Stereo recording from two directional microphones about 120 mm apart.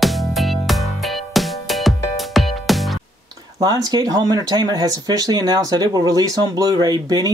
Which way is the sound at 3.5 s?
30° right (ahead or behind).